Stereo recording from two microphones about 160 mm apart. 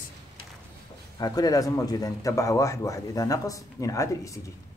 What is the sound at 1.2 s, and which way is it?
Speech, 25° left (ahead or behind).